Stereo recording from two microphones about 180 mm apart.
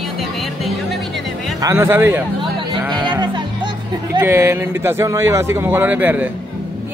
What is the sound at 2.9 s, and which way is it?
Speech, 25° right (ahead or behind).